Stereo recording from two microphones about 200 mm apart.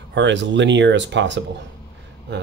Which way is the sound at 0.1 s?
65° right (ahead or behind).